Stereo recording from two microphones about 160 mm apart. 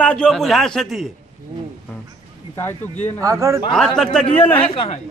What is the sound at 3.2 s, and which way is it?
Speech, 20° right (ahead or behind).